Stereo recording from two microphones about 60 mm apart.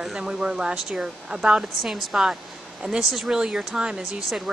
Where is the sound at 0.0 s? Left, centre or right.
Centre.